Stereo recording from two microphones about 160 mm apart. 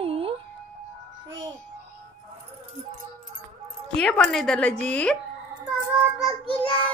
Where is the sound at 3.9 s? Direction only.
5° left (ahead or behind).